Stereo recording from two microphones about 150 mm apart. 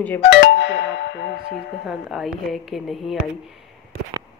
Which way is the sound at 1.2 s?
90° left.